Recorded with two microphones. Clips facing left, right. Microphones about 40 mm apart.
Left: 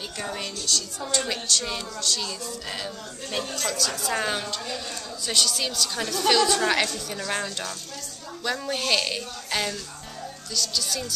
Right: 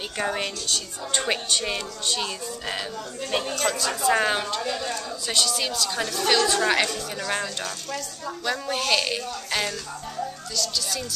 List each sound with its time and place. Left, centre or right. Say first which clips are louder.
0.2 s a woman's voice: right 6 dB; right
5.2 s a woman's voice: left 1 dB; centre